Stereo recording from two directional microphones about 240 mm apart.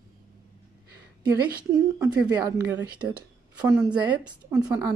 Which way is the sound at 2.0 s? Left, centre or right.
Centre.